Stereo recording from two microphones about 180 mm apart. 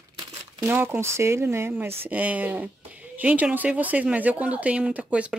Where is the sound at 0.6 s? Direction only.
10° right (ahead or behind).